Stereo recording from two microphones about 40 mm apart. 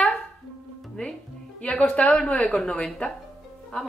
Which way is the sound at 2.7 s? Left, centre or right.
Left.